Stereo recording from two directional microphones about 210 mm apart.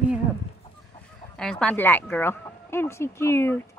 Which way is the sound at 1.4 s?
5° left (ahead or behind).